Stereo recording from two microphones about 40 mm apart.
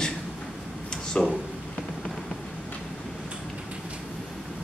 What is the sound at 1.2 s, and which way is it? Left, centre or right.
Speech, left.